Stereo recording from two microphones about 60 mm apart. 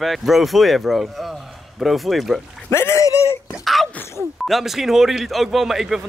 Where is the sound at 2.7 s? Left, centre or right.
Left.